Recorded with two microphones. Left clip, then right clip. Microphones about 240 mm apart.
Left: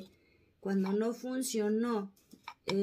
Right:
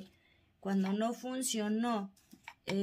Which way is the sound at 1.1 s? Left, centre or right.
Right.